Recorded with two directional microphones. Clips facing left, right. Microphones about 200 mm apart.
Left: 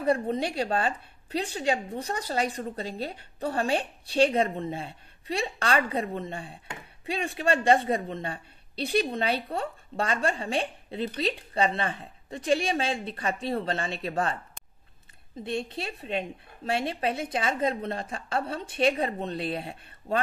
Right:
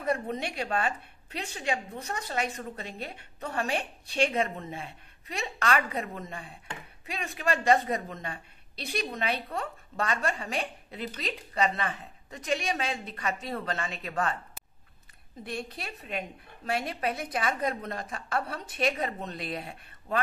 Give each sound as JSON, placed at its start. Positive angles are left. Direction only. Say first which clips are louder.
{"t": 0.0, "sound": "a woman's voice", "louder": "left 5 dB", "side_deg": 30}
{"t": 15.4, "sound": "a woman's voice", "louder": "left 5 dB", "side_deg": 25}